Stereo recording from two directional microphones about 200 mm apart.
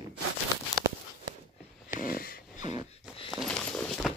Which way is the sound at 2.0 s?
45° left (ahead or behind).